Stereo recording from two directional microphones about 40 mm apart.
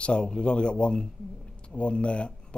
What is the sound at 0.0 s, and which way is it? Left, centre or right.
A man's voice, left.